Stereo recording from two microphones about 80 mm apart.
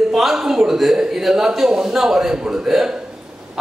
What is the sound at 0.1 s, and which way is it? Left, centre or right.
A man's voice, centre.